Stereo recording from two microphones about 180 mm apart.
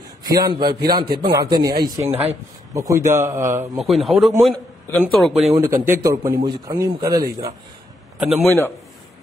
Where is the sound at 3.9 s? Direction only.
Centre (ahead or behind).